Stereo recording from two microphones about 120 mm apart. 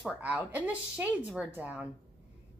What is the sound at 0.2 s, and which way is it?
Speech, 15° right (ahead or behind).